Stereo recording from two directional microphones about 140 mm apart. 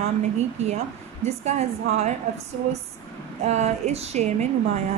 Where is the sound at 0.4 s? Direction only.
50° right (ahead or behind).